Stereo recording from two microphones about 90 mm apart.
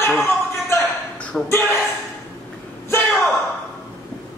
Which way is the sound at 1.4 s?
30° left (ahead or behind).